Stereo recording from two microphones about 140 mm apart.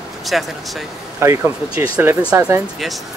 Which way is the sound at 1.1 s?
20° right (ahead or behind).